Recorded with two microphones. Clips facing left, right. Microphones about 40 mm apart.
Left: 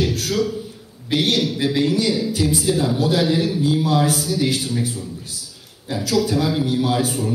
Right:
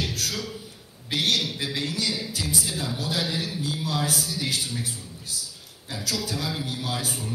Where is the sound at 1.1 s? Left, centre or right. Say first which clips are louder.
Left 6 dB; left.